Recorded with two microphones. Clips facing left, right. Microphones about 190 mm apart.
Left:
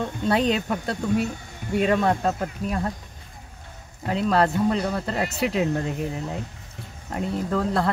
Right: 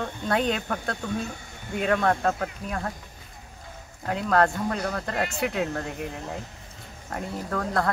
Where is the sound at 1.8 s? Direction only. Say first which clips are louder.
Left 1 dB; 15° left (ahead or behind).